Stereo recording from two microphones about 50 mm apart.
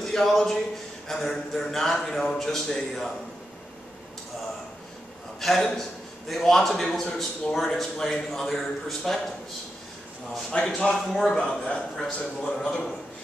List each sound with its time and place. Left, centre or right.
0.0 s a man's voice: centre
5.4 s a man's voice: centre
10.5 s a man's voice: left